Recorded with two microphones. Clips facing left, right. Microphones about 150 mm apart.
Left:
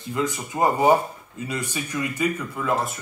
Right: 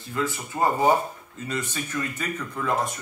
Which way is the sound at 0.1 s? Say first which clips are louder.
Left 2 dB; 15° left (ahead or behind).